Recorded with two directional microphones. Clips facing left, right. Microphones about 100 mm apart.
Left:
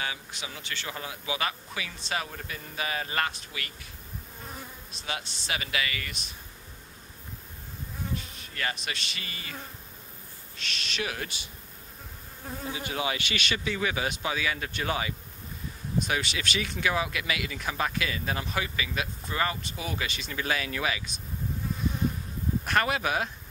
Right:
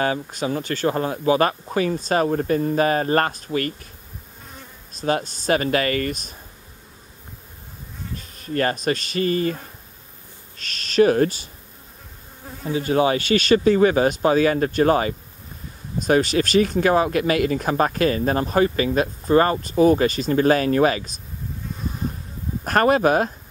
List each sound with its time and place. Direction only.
0.0 s speech: 45° right (ahead or behind)
4.9 s speech: 45° right (ahead or behind)
8.2 s insect: 45° right (ahead or behind)
10.5 s speech: 40° right (ahead or behind)
12.7 s speech: 40° right (ahead or behind)
21.6 s bee: 5° left (ahead or behind)
22.7 s speech: 40° right (ahead or behind)